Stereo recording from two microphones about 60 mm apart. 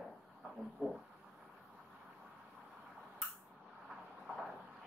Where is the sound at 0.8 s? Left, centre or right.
Centre.